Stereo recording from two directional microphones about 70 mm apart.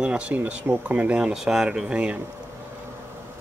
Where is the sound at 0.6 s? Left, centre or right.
Right.